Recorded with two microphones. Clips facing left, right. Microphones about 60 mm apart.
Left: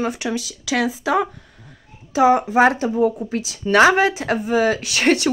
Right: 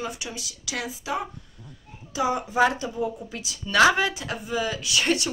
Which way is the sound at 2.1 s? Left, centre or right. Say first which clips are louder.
Left 10 dB; left.